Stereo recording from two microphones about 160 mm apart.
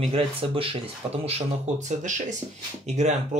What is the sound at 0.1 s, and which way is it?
Speech, 35° right (ahead or behind).